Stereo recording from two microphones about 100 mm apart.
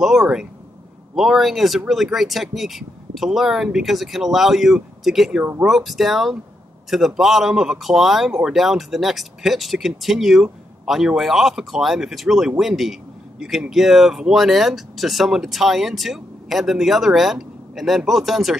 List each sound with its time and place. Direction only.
0.0 s speech: 5° right (ahead or behind)
5.4 s speech: 20° right (ahead or behind)
5.7 s speech: centre (ahead or behind)